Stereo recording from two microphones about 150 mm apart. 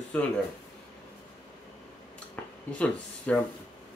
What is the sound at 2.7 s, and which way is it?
Speech, 10° left (ahead or behind).